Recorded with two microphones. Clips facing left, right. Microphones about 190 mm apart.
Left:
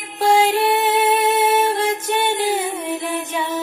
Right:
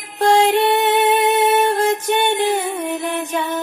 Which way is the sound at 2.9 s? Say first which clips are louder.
Right 2 dB; centre (ahead or behind).